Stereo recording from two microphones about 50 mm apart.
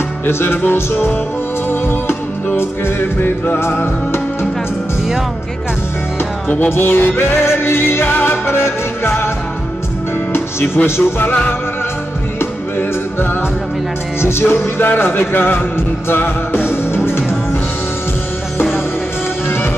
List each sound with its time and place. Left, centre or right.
0.3 s music: left
6.7 s music: left
10.3 s music: left
12.4 s music: left
14.8 s music: left
19.4 s music: left